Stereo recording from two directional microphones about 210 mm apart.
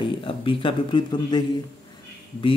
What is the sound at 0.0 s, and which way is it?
Speech, 25° left (ahead or behind).